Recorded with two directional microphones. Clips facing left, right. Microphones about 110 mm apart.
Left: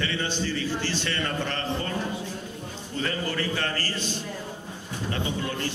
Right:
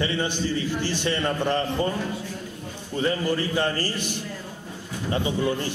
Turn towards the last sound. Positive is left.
turn(degrees=-15)  # may be behind; listen again after turning